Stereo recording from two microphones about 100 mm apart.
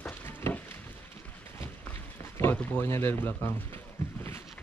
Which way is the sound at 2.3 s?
25° left (ahead or behind).